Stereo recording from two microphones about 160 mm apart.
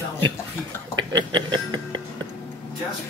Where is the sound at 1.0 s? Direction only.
30° right (ahead or behind).